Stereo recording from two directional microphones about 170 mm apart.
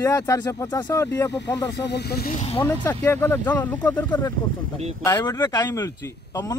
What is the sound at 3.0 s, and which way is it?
A man's voice, 15° left (ahead or behind).